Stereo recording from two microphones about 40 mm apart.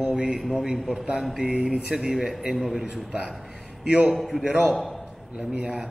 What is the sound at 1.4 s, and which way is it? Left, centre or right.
A man's voice, centre.